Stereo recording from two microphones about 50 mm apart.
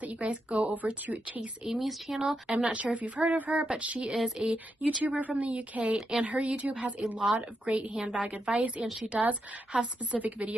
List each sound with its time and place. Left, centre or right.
0.0 s a woman's voice: right
1.7 s speech: centre
2.5 s a woman's voice: right
4.8 s a woman's voice: right